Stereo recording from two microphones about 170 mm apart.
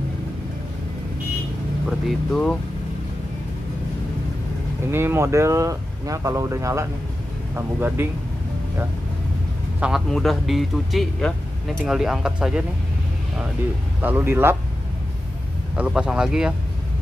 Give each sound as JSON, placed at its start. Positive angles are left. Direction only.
{"t": 1.9, "sound": "speech", "side_deg": 0}
{"t": 4.9, "sound": "speech", "side_deg": -15}
{"t": 9.8, "sound": "speech", "side_deg": -5}
{"t": 14.0, "sound": "speech", "side_deg": -10}
{"t": 15.7, "sound": "speech", "side_deg": -5}